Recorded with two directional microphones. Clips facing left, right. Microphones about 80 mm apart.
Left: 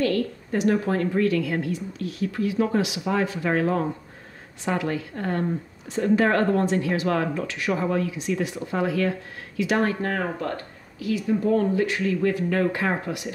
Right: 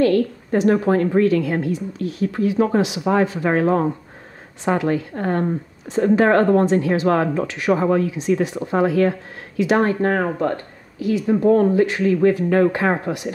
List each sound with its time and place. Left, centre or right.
0.0 s a woman's voice: right
11.2 s a woman's voice: right